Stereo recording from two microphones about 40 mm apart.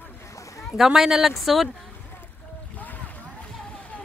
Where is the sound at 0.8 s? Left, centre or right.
Centre.